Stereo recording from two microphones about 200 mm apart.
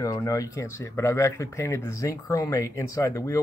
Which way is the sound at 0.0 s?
15° left (ahead or behind).